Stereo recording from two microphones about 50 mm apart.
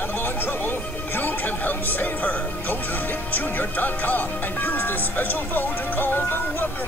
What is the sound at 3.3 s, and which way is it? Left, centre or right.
Speech, left.